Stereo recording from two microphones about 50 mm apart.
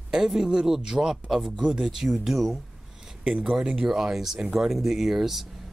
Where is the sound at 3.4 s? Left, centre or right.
Centre.